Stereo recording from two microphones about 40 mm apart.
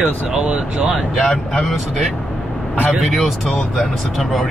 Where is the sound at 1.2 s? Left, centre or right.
Centre.